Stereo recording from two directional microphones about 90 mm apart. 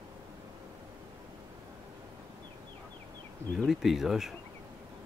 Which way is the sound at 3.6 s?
5° right (ahead or behind).